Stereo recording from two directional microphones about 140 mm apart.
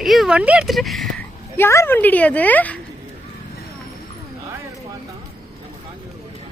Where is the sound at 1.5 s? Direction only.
20° left (ahead or behind).